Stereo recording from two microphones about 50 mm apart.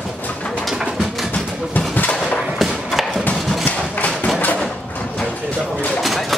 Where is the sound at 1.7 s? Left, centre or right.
Left.